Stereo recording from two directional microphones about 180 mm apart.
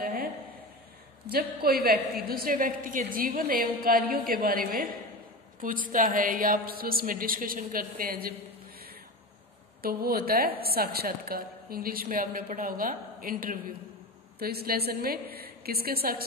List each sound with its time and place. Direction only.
0.0 s a sound: 55° right (ahead or behind)
1.3 s a woman's voice: 55° right (ahead or behind)
9.8 s a woman's voice: 55° right (ahead or behind)